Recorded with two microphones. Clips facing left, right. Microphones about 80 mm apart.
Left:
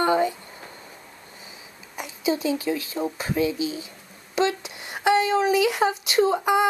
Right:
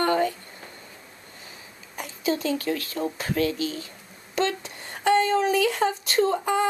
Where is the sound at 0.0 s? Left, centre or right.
Centre.